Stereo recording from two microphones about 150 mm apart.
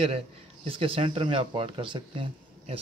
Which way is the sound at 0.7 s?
35° right (ahead or behind).